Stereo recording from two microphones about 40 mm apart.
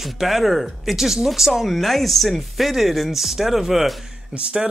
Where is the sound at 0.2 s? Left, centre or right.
Centre.